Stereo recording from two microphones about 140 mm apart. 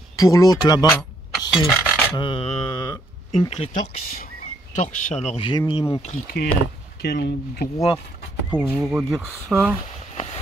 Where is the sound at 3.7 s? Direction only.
90° left.